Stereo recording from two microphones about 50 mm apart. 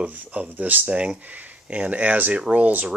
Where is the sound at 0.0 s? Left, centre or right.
Right.